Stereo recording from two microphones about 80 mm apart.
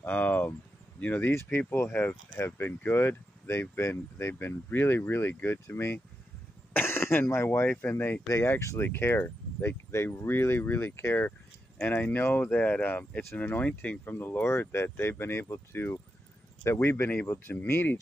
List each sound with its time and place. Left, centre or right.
0.0 s speech: left